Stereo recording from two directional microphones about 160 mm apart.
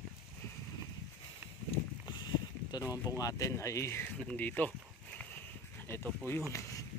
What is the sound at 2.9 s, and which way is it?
Speech, 20° left (ahead or behind).